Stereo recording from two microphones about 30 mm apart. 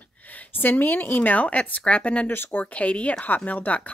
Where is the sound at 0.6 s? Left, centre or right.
Left.